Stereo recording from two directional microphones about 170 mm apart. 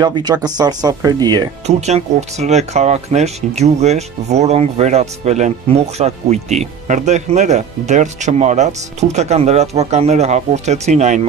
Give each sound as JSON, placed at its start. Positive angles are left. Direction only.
{"t": 0.0, "sound": "speech", "side_deg": -25}
{"t": 1.7, "sound": "speech", "side_deg": -40}